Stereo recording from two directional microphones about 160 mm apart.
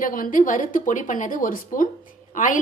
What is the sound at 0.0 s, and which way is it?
A woman's voice, 60° left (ahead or behind).